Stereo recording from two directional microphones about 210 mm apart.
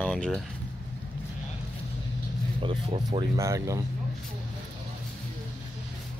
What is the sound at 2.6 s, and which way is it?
Speech, 20° right (ahead or behind).